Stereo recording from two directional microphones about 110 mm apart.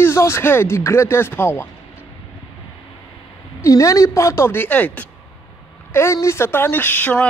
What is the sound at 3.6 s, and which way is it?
A man's voice, 30° left (ahead or behind).